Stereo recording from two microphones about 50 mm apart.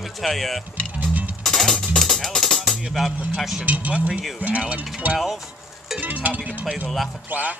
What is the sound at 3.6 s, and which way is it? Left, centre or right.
Speech, right.